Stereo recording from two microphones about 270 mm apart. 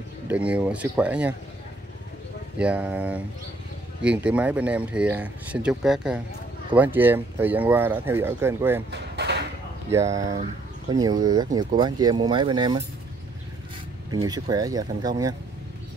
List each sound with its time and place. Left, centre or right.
0.3 s speech: centre
2.6 s speech: centre
8.9 s a sound: right
9.8 s speech: centre
10.1 s speech: right
10.9 s speech: centre
14.1 s speech: centre